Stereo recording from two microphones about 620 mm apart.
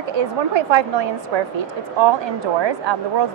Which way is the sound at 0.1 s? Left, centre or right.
Right.